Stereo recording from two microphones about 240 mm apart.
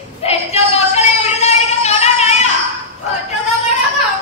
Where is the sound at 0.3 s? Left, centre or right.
Left.